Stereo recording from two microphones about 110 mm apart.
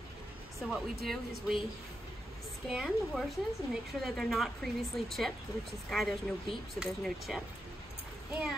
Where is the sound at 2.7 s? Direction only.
Centre (ahead or behind).